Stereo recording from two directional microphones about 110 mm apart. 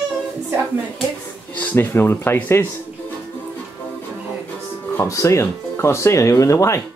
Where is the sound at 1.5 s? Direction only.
15° left (ahead or behind).